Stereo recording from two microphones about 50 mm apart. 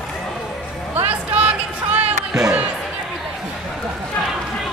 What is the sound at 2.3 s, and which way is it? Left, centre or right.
Speech, centre.